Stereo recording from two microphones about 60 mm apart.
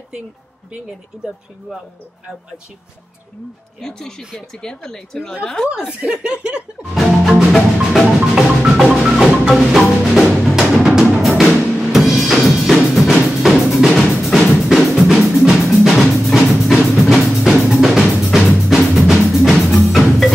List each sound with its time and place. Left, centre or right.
1.1 s speech: centre
3.8 s speech: centre
5.9 s speech: centre
6.9 s music: centre
11.9 s drum: centre
13.9 s music: centre
17.4 s drum: centre